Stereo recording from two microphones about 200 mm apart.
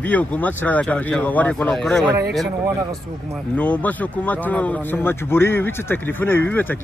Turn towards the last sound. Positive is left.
turn(degrees=10)  # may be behind; listen again after turning